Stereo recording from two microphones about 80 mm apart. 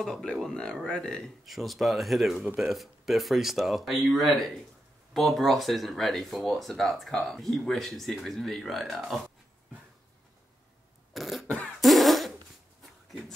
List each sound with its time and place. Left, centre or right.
0.0 s speech: centre
2.4 s speech: centre
11.1 s a sound: centre
11.4 s beatboxing: centre
11.8 s fart: centre